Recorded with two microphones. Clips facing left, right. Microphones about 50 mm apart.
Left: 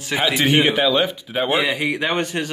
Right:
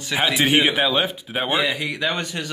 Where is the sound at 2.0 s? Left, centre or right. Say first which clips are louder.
Left 3 dB; left.